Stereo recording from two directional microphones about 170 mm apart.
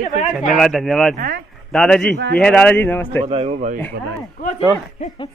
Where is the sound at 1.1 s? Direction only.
60° right (ahead or behind).